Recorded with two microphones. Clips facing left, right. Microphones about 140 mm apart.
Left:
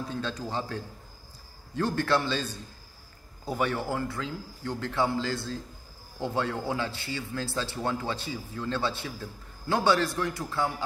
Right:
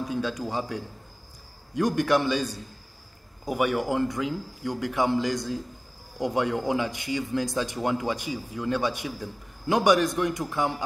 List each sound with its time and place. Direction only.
0.0 s a man's voice: 10° right (ahead or behind)